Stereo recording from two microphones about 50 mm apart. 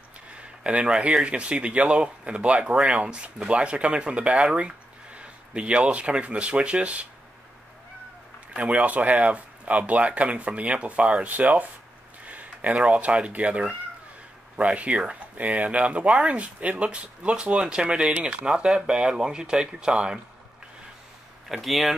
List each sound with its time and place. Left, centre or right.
0.3 s a sound: right
1.2 s speech: right
8.5 s speech: right
12.3 s a sound: right
12.7 s speech: right
21.5 s speech: centre